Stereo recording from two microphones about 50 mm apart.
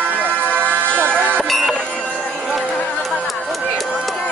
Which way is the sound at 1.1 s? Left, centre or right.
Left.